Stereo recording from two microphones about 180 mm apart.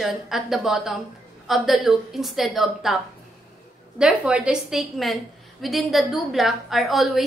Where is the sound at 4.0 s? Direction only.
5° right (ahead or behind).